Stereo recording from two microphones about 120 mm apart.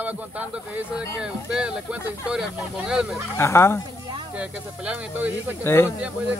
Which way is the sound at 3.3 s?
20° left (ahead or behind).